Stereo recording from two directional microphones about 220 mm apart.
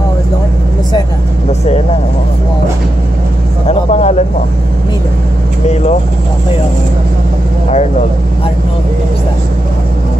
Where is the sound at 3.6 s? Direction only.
30° left (ahead or behind).